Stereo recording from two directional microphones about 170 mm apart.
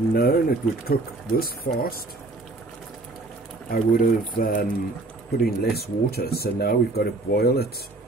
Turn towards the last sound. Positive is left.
turn(degrees=65)  # may be behind; listen again after turning